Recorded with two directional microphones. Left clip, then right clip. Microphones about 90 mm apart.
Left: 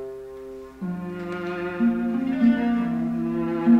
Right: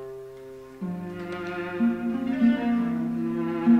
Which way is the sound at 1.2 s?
30° left (ahead or behind).